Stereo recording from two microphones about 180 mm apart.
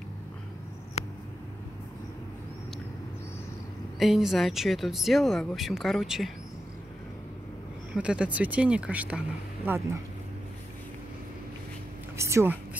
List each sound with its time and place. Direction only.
4.0 s speech: centre (ahead or behind)
7.9 s speech: 5° right (ahead or behind)
12.2 s speech: 15° right (ahead or behind)